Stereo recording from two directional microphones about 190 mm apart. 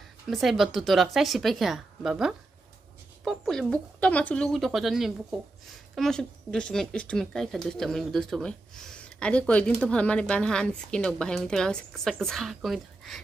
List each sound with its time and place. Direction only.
0.3 s speech: centre (ahead or behind)